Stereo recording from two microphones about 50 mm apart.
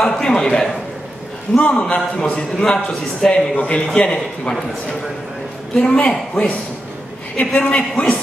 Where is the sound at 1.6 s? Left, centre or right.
Left.